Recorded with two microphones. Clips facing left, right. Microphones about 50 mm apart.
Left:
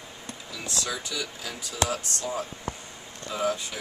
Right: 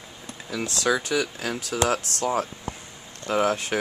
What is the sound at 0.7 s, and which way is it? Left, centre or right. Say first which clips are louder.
Speech: right 9 dB; right.